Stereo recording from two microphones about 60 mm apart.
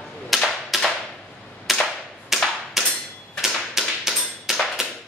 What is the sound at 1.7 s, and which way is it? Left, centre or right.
Cap gun, centre.